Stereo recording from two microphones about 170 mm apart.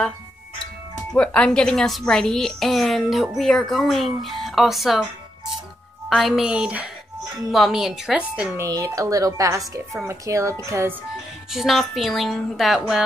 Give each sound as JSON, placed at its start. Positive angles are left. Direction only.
{"t": 1.1, "sound": "a woman's voice", "side_deg": 5}
{"t": 6.0, "sound": "a woman's voice", "side_deg": 0}
{"t": 8.6, "sound": "a woman's voice", "side_deg": -20}
{"t": 11.5, "sound": "a woman's voice", "side_deg": 0}